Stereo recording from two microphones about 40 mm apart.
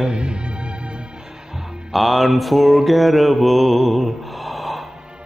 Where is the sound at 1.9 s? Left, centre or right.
Centre.